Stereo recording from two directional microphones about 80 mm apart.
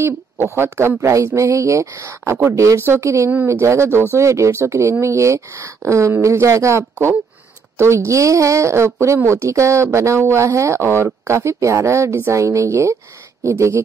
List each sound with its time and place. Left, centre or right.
0.0 s speech: right